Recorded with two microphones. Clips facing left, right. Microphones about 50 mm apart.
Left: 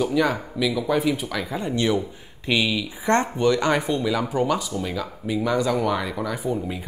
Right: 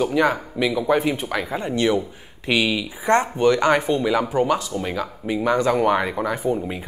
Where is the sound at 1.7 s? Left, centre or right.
Right.